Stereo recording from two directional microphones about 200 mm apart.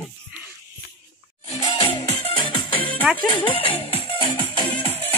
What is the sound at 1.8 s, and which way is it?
Music, 25° left (ahead or behind).